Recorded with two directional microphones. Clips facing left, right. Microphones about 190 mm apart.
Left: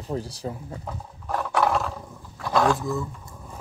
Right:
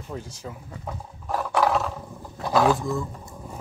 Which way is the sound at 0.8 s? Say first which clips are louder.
Right 4 dB; centre (ahead or behind).